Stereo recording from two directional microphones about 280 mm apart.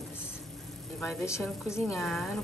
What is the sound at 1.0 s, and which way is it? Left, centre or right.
A woman's voice, centre.